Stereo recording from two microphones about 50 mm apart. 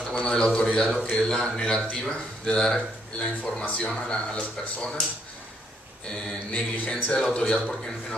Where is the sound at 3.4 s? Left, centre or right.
Left.